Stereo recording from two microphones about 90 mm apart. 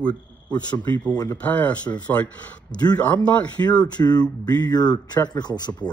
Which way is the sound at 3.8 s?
50° left (ahead or behind).